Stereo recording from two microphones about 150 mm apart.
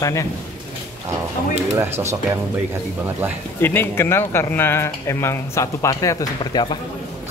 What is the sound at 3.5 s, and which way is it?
A man's voice, 15° left (ahead or behind).